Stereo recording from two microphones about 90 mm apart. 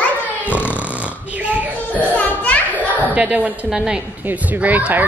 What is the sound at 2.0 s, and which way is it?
Children playing, 20° left (ahead or behind).